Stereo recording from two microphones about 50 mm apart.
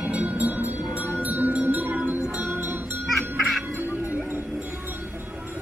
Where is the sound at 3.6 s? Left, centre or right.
Right.